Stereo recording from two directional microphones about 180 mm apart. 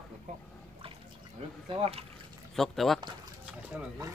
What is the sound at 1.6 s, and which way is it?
Speech, 30° right (ahead or behind).